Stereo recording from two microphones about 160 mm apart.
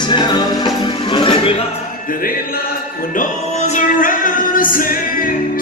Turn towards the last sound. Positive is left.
turn(degrees=60)  # may be behind; listen again after turning